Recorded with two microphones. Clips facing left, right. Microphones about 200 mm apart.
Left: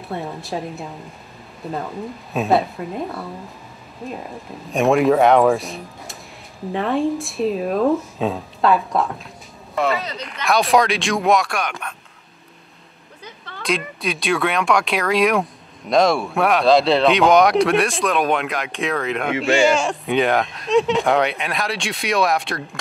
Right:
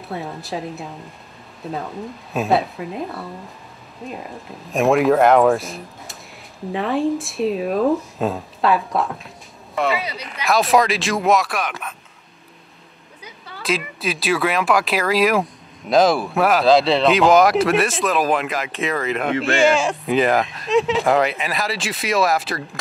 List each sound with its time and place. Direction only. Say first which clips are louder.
0.1 s speech: left 1 dB; centre (ahead or behind)
13.2 s speech: left 1 dB; 5° right (ahead or behind)